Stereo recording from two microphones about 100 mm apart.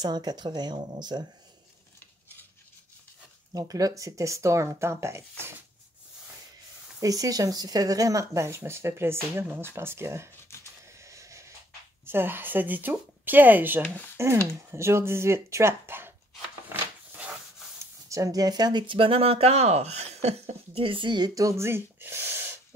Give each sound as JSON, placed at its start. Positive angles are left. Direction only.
{"t": 0.0, "sound": "speech", "side_deg": -45}
{"t": 3.5, "sound": "speech", "side_deg": -40}
{"t": 7.0, "sound": "speech", "side_deg": -35}
{"t": 10.9, "sound": "vehicle", "side_deg": -30}
{"t": 12.1, "sound": "speech", "side_deg": -20}
{"t": 18.1, "sound": "speech", "side_deg": -35}
{"t": 21.4, "sound": "a sound", "side_deg": -30}